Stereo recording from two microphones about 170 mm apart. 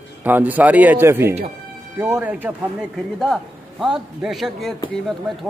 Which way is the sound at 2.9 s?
Centre (ahead or behind).